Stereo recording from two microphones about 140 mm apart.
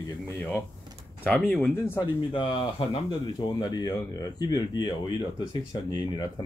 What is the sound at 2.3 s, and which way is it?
Speech, 35° left (ahead or behind).